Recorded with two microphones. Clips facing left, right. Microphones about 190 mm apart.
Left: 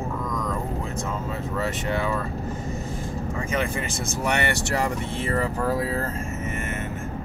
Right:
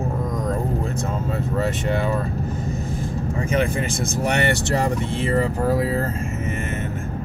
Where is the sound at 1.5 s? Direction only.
30° right (ahead or behind).